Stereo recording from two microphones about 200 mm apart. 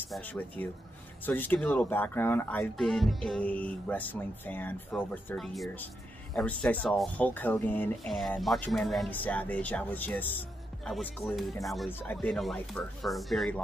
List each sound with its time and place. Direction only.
0.0 s speech: 10° left (ahead or behind)